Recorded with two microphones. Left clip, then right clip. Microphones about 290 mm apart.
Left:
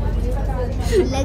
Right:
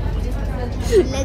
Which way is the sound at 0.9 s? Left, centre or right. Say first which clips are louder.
Right 3 dB; centre.